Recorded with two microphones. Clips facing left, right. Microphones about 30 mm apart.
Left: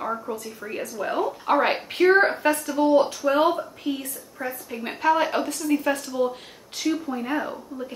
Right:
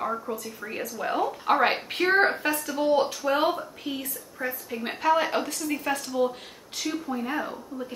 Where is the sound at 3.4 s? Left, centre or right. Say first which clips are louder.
Left 3 dB; centre.